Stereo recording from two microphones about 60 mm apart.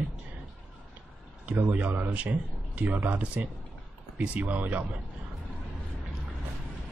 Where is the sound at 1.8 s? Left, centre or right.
Right.